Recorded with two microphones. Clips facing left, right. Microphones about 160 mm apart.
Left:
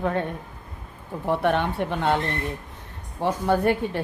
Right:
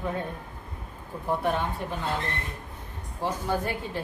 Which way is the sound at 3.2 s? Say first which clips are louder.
Left 7 dB; 60° left (ahead or behind).